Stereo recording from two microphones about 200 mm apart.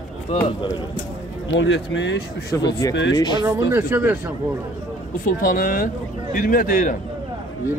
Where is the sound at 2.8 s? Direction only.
15° left (ahead or behind).